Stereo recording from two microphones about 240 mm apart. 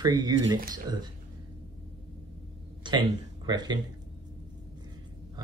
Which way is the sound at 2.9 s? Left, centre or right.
Centre.